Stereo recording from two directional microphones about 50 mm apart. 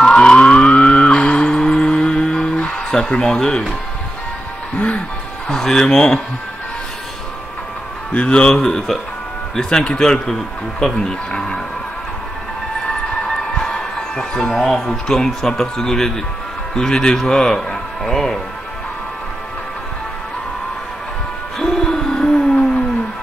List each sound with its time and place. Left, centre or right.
0.0 s a sound: centre
0.4 s music: left
2.9 s a man's voice: centre
4.7 s speech: left
5.5 s a man's voice: centre
8.1 s a man's voice: left
13.1 s a sound: centre
13.7 s a man's voice: centre
21.5 s hoot: centre